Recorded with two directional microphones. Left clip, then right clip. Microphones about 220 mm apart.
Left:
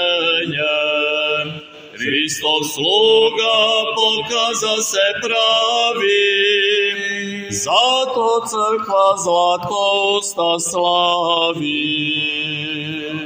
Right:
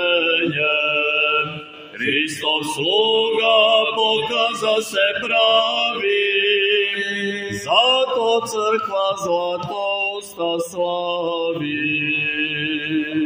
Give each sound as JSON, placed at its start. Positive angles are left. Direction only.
{"t": 0.0, "sound": "mantra", "side_deg": 45}